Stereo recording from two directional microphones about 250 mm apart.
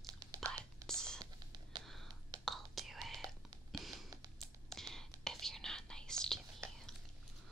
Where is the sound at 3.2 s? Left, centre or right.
Centre.